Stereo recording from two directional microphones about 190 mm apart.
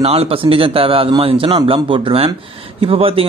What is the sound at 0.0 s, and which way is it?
A man's voice, 30° right (ahead or behind).